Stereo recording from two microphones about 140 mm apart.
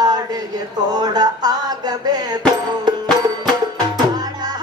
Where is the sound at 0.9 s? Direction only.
30° right (ahead or behind).